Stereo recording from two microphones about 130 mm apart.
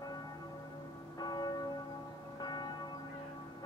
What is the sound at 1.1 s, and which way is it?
Church bell, 30° left (ahead or behind).